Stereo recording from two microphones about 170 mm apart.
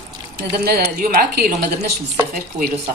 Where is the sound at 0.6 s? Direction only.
60° right (ahead or behind).